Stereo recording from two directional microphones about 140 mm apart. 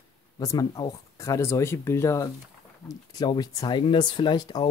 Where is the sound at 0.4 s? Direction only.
25° left (ahead or behind).